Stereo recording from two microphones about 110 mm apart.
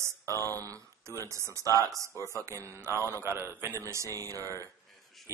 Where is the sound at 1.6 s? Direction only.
30° left (ahead or behind).